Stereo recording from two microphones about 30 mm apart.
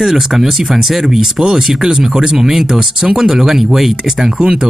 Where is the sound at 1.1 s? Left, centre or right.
Centre.